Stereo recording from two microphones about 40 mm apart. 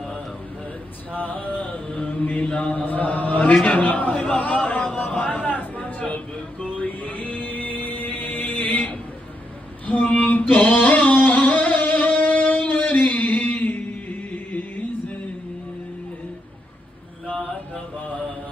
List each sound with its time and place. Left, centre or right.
1.1 s a sound: left
2.0 s mantra: left
2.4 s mantra: left
2.7 s mantra: left
3.6 s a man's voice: left
5.2 s a sound: left
6.8 s music: left
9.8 s a sound: left
10.4 s music: left